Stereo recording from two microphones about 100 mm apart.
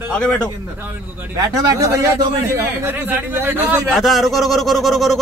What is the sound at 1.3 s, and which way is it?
A man's voice, 35° right (ahead or behind).